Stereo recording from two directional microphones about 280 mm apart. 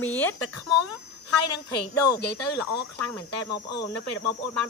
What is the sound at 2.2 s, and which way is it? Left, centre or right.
Speech, left.